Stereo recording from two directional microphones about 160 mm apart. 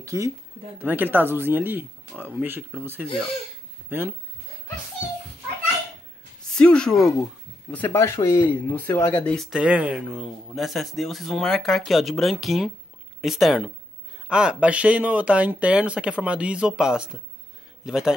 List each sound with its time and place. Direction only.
0.0 s speech: 20° right (ahead or behind)
6.5 s speech: 5° left (ahead or behind)
7.7 s speech: 15° left (ahead or behind); by 18.1 s 5° right (ahead or behind)